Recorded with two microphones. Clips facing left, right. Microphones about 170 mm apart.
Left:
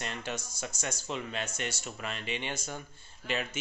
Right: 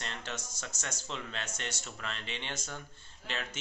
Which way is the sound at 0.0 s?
10° left (ahead or behind).